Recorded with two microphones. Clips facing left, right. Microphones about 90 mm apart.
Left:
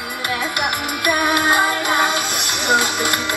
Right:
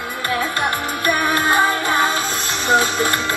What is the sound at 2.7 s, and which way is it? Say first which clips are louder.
Speech: right 2 dB; 15° left (ahead or behind).